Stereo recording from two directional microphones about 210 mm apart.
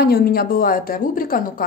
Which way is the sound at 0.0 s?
45° left (ahead or behind).